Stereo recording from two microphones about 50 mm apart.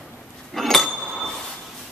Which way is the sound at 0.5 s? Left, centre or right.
Centre.